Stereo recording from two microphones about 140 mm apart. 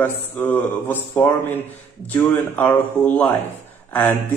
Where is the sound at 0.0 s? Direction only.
15° left (ahead or behind).